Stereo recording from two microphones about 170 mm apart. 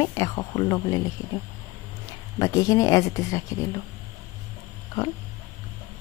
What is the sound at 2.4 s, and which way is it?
Speech, 20° left (ahead or behind).